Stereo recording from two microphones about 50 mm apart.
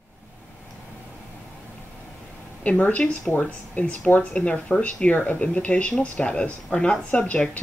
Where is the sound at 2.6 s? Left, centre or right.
Left.